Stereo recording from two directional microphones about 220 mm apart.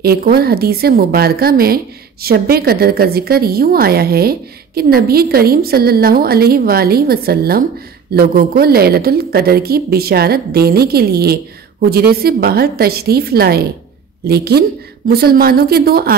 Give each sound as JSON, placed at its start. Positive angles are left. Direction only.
{"t": 0.0, "sound": "a woman's voice", "side_deg": -45}